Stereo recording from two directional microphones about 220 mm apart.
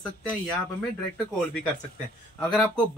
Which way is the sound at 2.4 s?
5° left (ahead or behind).